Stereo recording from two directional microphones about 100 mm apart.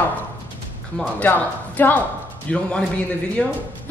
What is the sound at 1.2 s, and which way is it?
A woman's voice, 20° left (ahead or behind).